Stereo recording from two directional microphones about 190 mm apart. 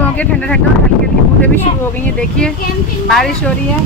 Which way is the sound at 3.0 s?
Centre (ahead or behind).